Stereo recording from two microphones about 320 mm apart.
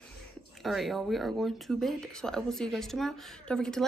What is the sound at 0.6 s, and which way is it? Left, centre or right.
Speech, centre.